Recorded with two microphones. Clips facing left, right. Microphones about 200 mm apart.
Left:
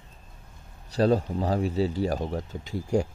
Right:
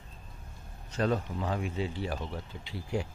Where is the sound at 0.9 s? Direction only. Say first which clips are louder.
Left 7 dB; 35° left (ahead or behind).